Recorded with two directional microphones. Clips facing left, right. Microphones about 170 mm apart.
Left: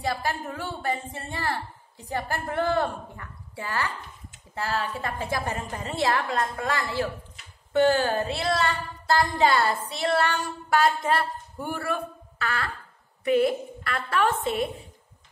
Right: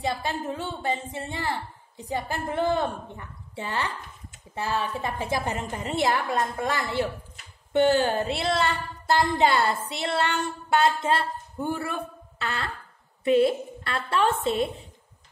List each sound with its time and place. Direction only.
0.0 s speech: 20° right (ahead or behind)